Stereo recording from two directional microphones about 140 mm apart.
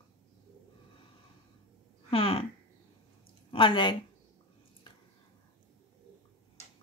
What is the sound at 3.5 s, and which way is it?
Speech, 35° left (ahead or behind).